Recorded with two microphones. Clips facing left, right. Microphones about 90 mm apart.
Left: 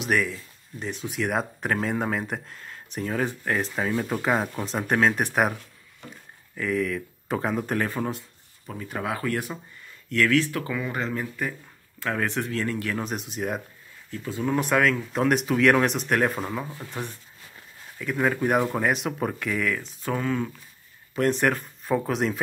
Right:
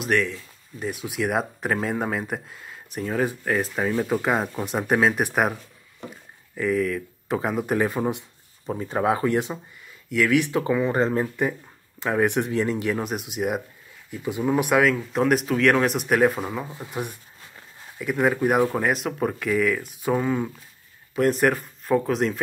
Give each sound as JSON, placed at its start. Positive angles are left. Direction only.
{"t": 0.0, "sound": "speech", "side_deg": 0}
{"t": 8.6, "sound": "speech", "side_deg": -30}
{"t": 10.0, "sound": "speech", "side_deg": -10}
{"t": 10.5, "sound": "speech", "side_deg": -25}
{"t": 12.0, "sound": "speech", "side_deg": -15}
{"t": 16.6, "sound": "speech", "side_deg": -15}
{"t": 20.0, "sound": "speech", "side_deg": -15}
{"t": 21.1, "sound": "speech", "side_deg": -5}